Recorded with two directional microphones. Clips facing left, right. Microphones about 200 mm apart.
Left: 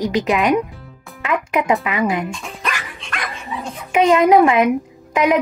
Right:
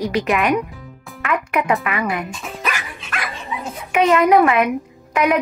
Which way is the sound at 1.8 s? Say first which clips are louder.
Left 3 dB; 20° left (ahead or behind).